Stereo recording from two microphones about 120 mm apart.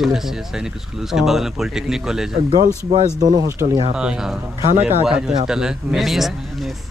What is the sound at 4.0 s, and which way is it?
Speech, 5° right (ahead or behind).